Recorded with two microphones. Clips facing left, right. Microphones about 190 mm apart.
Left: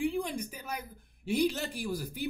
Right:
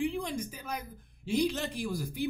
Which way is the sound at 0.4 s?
15° left (ahead or behind).